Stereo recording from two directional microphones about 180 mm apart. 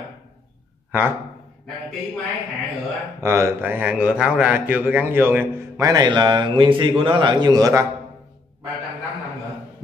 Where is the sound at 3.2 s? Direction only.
15° right (ahead or behind).